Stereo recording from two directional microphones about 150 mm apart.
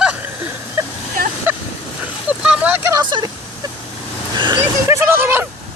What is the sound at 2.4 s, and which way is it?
Vehicle, 10° right (ahead or behind).